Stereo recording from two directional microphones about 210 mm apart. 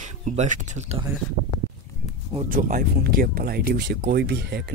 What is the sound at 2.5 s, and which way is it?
Speech, 45° right (ahead or behind).